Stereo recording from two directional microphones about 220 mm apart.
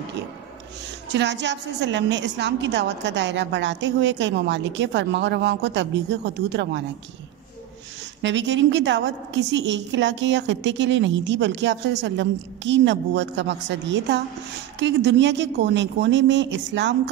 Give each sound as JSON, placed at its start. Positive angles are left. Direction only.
{"t": 1.1, "sound": "a woman's voice", "side_deg": -50}
{"t": 8.2, "sound": "a woman's voice", "side_deg": -55}